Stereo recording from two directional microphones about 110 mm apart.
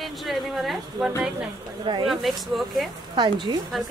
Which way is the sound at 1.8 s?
45° right (ahead or behind).